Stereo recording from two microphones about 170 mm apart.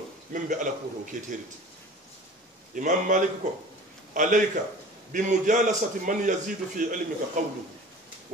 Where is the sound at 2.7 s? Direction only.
50° right (ahead or behind).